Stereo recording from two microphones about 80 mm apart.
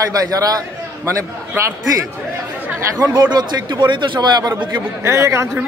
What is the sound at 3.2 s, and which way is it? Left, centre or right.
A man's voice, right.